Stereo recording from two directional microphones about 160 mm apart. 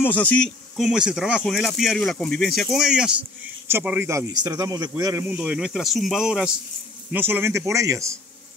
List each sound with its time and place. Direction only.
0.0 s speech: 10° left (ahead or behind)
0.7 s a man's voice: 5° right (ahead or behind)
5.4 s a man's voice: 5° right (ahead or behind)